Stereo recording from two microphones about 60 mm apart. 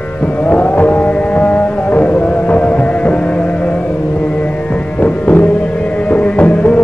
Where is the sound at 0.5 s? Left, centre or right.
Left.